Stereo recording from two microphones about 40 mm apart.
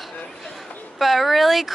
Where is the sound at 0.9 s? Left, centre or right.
Centre.